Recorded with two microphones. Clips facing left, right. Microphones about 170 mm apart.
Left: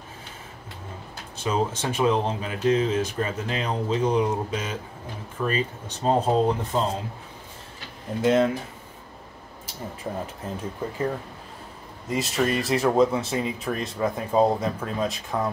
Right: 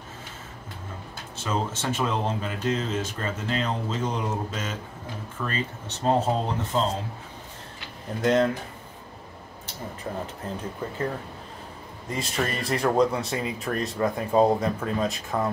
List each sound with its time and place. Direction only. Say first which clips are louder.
1.4 s speech: left 3 dB; 10° left (ahead or behind)
8.2 s speech: left 1 dB; 5° left (ahead or behind)
10.1 s speech: left 1 dB; 15° left (ahead or behind)
12.1 s speech: left 4 dB; centre (ahead or behind)